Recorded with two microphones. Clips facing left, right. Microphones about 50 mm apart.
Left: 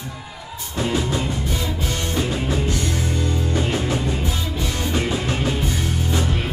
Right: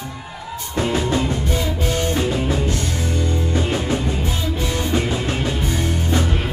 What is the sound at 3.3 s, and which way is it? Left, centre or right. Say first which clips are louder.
Music: right 1 dB; right.